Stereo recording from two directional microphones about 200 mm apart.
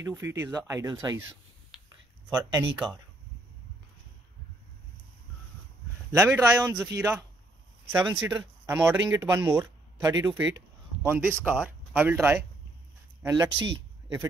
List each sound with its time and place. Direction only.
0.0 s speech: 15° right (ahead or behind)
2.2 s speech: 15° right (ahead or behind)
6.1 s speech: 10° right (ahead or behind)
13.5 s speech: 70° right (ahead or behind)